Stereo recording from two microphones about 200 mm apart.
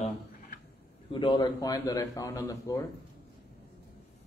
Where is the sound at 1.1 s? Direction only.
25° left (ahead or behind).